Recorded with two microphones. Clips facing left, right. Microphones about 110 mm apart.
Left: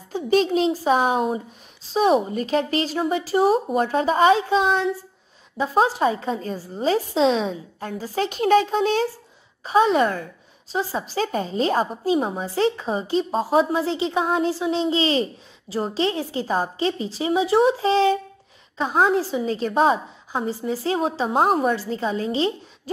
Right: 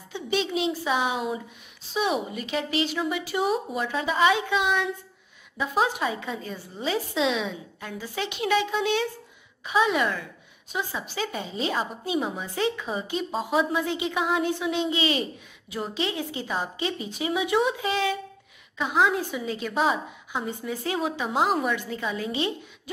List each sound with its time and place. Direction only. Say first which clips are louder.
0.1 s a woman's voice: left 8 dB; 40° left (ahead or behind)